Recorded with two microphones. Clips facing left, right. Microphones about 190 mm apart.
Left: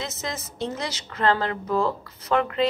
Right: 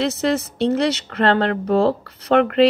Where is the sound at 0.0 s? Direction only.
70° right (ahead or behind).